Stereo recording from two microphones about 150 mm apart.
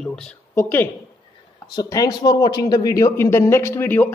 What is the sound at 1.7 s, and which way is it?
Speech, 25° left (ahead or behind).